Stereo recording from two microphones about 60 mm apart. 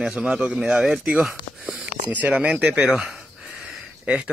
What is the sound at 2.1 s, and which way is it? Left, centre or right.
Speech, right.